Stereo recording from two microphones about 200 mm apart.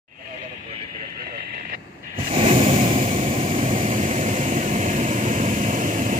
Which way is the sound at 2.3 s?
30° right (ahead or behind).